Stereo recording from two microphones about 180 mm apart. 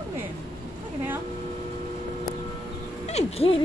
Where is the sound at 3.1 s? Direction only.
35° left (ahead or behind).